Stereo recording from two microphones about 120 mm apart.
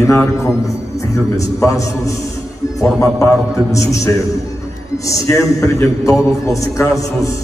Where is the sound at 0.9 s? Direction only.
25° left (ahead or behind).